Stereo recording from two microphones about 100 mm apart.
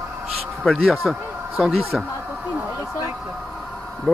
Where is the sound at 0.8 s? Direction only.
Centre (ahead or behind).